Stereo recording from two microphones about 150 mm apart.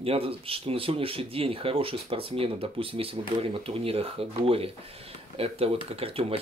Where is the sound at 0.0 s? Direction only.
40° right (ahead or behind).